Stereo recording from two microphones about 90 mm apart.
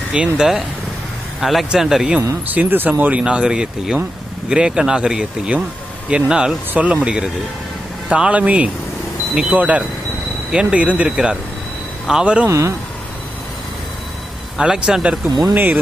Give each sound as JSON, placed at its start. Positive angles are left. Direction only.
{"t": 0.1, "sound": "speech", "side_deg": -10}
{"t": 2.4, "sound": "speech", "side_deg": -20}
{"t": 12.4, "sound": "speech", "side_deg": -35}
{"t": 14.6, "sound": "speech", "side_deg": -10}
{"t": 15.2, "sound": "speech", "side_deg": -45}
{"t": 15.5, "sound": "speech", "side_deg": -20}